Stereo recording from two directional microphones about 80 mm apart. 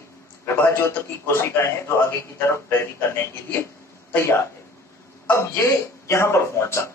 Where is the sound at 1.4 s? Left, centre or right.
Left.